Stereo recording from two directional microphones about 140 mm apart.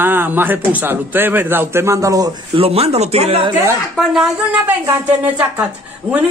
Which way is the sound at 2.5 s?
45° right (ahead or behind).